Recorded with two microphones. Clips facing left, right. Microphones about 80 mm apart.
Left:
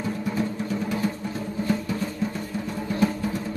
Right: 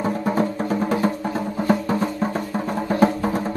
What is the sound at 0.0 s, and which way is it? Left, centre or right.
Music, right.